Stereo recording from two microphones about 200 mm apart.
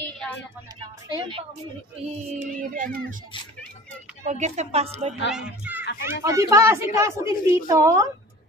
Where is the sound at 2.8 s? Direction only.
40° right (ahead or behind).